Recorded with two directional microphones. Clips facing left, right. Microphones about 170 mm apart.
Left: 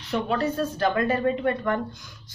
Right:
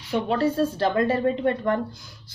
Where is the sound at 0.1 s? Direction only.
30° right (ahead or behind).